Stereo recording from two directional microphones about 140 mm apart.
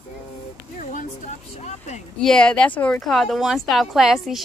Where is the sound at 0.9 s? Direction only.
60° left (ahead or behind).